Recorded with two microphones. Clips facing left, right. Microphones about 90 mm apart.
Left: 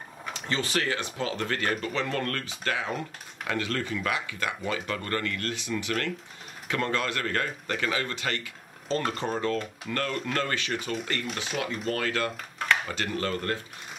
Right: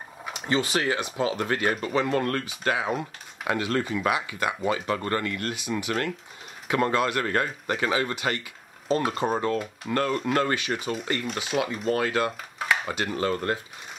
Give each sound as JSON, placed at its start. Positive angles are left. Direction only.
{"t": 0.2, "sound": "speech", "side_deg": -15}
{"t": 11.9, "sound": "speech", "side_deg": -20}
{"t": 12.5, "sound": "a sound", "side_deg": -5}
{"t": 12.8, "sound": "speech", "side_deg": -15}